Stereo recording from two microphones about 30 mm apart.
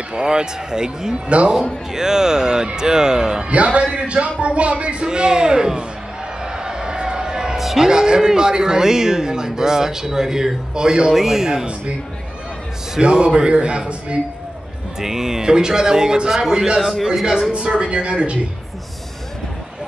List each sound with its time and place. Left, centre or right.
0.1 s a man's voice: right
3.4 s speech: right
5.0 s a man's voice: right
6.4 s a sound: right
7.5 s a sound: centre
7.8 s a man's voice: right
11.1 s speech: centre
13.0 s speech: right
15.0 s speech: centre
15.4 s a man's voice: right
17.5 s speech: right